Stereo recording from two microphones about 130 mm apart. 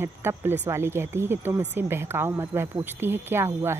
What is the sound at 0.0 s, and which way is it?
A woman's voice, 20° right (ahead or behind).